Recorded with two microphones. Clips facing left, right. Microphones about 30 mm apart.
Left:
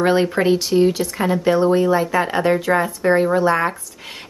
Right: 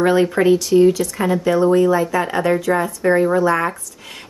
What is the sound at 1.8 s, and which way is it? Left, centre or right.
Speech, left.